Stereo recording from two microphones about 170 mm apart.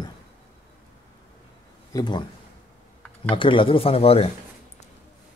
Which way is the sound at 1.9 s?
25° left (ahead or behind).